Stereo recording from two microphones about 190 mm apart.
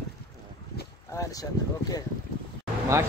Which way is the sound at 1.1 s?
20° left (ahead or behind).